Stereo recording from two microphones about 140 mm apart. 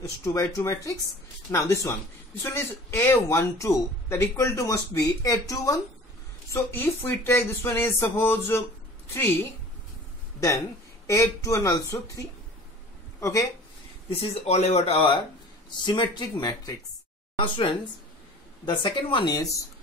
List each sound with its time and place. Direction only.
0.0 s speech: 20° left (ahead or behind)
11.1 s speech: 20° left (ahead or behind)
14.3 s speech: 50° left (ahead or behind)
15.8 s speech: 35° left (ahead or behind)
18.7 s speech: 35° left (ahead or behind)